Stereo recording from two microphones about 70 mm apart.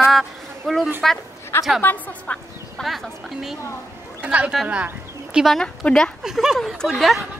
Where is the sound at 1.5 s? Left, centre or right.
Left.